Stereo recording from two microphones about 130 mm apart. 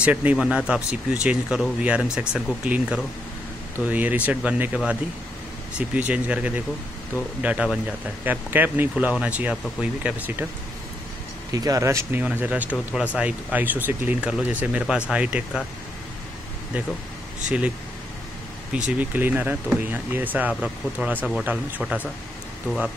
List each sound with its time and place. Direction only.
0.0 s speech: 10° right (ahead or behind)
11.5 s speech: 25° right (ahead or behind); by 15.6 s 10° right (ahead or behind)
17.5 s speech: 10° right (ahead or behind)
18.9 s speech: 15° right (ahead or behind)
21.2 s speech: centre (ahead or behind)
21.5 s speech: 10° right (ahead or behind)